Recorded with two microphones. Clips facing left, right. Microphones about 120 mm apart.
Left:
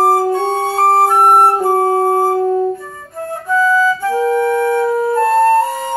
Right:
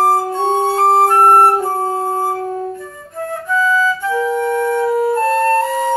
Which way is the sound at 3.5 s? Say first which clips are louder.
Left 3 dB; 40° left (ahead or behind).